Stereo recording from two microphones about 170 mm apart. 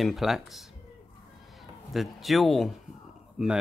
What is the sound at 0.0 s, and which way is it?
Speech, centre (ahead or behind).